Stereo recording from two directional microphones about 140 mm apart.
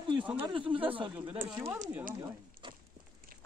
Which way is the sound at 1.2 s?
15° right (ahead or behind).